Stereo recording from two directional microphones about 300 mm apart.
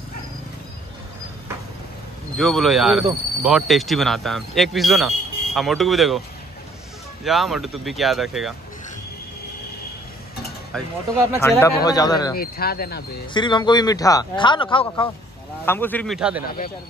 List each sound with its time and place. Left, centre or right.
2.3 s speech: centre
7.2 s speech: centre
11.3 s speech: centre
12.4 s speech: left
13.3 s speech: centre